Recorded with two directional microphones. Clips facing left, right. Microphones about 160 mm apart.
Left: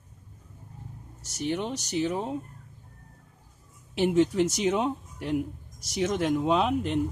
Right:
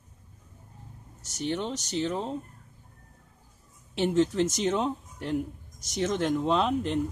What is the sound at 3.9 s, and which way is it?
Speech, 5° left (ahead or behind).